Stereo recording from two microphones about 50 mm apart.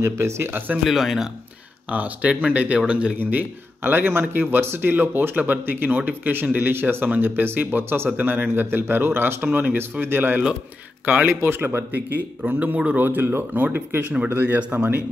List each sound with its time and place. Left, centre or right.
0.0 s speech: right
0.5 s speech: right
0.8 s a man's voice: centre
1.9 s speech: right
3.2 s speech: right
5.3 s speech: right
5.7 s speech: right
5.9 s speech: right
6.7 s speech: right
8.6 s speech: right
12.4 s speech: right
13.0 s speech: right
14.6 s speech: right